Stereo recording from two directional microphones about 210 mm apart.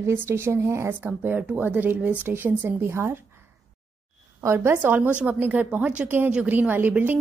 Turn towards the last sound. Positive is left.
turn(degrees=-10)  # may be behind; listen again after turning